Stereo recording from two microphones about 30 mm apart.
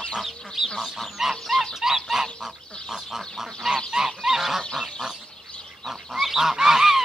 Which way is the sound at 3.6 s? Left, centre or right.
Centre.